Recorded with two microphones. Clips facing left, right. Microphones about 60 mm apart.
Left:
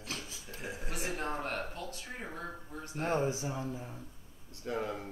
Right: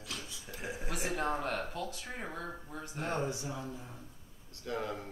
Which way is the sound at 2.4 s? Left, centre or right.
Centre.